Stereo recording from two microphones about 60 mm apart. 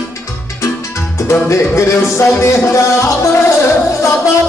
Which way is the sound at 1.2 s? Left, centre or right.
Left.